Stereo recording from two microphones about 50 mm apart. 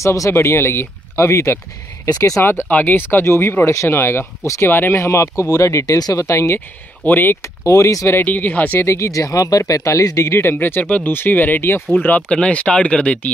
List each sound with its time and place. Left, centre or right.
0.0 s speech: left
2.4 s speech: left
3.6 s speech: left
4.9 s speech: left
7.1 s speech: left
7.4 s speech: left
8.2 s speech: left
8.8 s speech: left
10.4 s speech: left
10.8 s speech: left
12.3 s speech: centre